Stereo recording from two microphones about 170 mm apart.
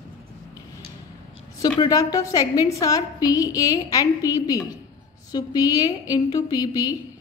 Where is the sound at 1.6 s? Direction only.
20° left (ahead or behind).